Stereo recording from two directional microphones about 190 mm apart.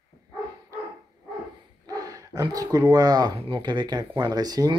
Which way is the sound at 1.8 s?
20° right (ahead or behind).